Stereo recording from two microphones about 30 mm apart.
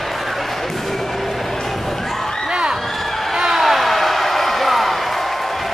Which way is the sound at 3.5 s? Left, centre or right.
Centre.